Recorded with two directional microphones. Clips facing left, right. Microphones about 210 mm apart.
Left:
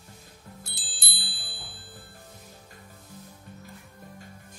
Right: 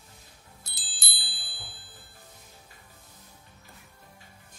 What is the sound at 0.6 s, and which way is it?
Music, 40° right (ahead or behind).